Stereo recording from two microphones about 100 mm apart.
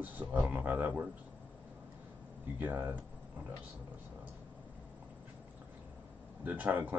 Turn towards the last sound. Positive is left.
turn(degrees=-20)  # may be behind; listen again after turning